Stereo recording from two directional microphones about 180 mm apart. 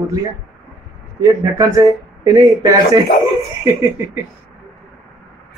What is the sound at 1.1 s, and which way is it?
Speech, 15° right (ahead or behind).